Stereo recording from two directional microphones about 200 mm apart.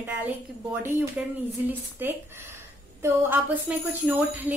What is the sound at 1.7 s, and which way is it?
Speech, 10° right (ahead or behind).